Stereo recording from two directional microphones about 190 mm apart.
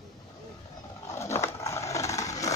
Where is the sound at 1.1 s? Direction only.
15° left (ahead or behind).